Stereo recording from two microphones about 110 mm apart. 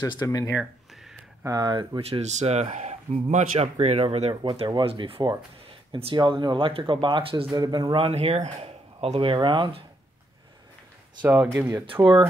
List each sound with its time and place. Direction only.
0.0 s speech: 40° left (ahead or behind)
0.5 s a sound: 5° right (ahead or behind)
1.4 s speech: 35° right (ahead or behind)
2.0 s speech: 65° right (ahead or behind)
7.5 s speech: 40° right (ahead or behind)
7.9 s speech: 65° right (ahead or behind)
9.2 s speech: 50° right (ahead or behind)
11.2 s speech: 20° right (ahead or behind)
11.8 s speech: 50° right (ahead or behind)